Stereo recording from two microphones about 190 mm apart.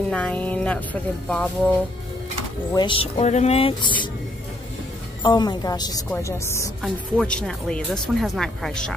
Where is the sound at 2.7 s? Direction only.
25° left (ahead or behind).